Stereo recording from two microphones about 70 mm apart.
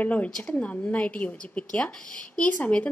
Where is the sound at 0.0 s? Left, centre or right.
Left.